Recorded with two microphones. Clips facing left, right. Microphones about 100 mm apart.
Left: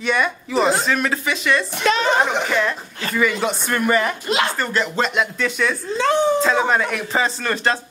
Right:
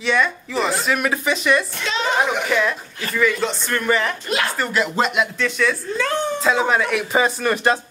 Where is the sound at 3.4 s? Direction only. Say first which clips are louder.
Left 1 dB; 10° left (ahead or behind).